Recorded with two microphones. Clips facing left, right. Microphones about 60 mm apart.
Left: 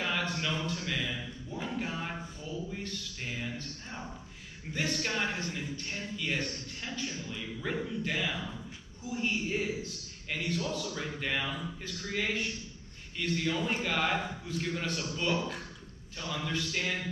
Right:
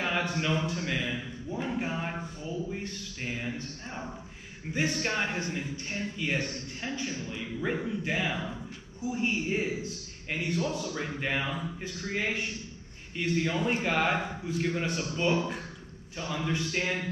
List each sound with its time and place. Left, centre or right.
0.0 s a man's voice: right